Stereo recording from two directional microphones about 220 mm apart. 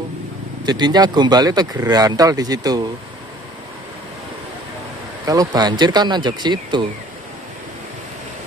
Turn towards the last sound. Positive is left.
turn(degrees=-20)  # may be behind; listen again after turning